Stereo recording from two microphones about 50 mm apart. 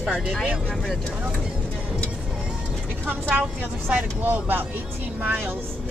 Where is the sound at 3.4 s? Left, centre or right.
Right.